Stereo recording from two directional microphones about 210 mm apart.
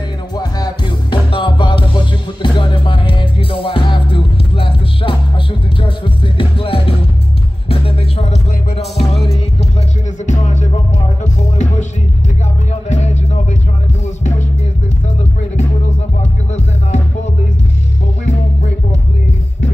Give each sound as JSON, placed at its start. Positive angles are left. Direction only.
{"t": 0.4, "sound": "music", "side_deg": 20}
{"t": 12.9, "sound": "music", "side_deg": 35}
{"t": 16.2, "sound": "music", "side_deg": 30}